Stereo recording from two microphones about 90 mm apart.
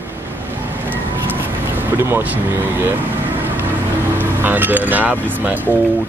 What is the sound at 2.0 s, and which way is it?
Speech, 25° right (ahead or behind).